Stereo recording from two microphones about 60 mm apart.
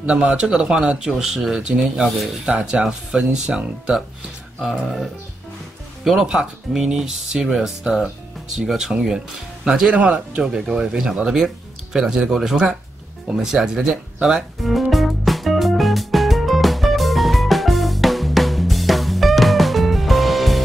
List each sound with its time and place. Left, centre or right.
0.0 s speech: centre
2.0 s speech: centre
2.4 s speech: centre
6.2 s speech: centre; by 10.4 s right
10.4 s speech: centre
13.8 s music: centre